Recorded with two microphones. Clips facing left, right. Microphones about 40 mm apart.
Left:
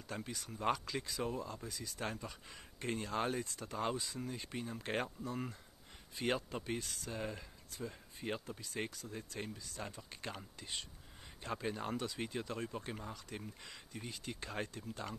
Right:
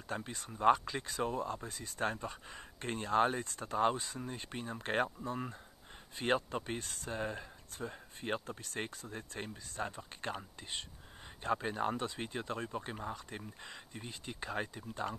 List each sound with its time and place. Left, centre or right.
0.1 s speech: right
0.5 s speech: centre
1.0 s speech: right
8.8 s speech: right
11.5 s speech: right
12.0 s speech: right; by 15.0 s centre